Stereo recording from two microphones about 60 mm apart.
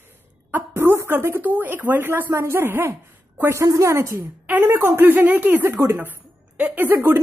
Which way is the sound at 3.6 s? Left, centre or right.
Right.